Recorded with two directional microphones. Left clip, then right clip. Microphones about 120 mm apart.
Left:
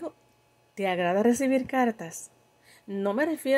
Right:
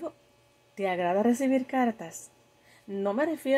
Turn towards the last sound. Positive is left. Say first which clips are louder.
# left 1 dB
turn(degrees=35)  # may be behind; listen again after turning